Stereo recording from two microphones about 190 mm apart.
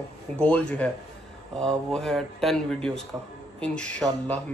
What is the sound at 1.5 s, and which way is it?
Speech, 5° left (ahead or behind).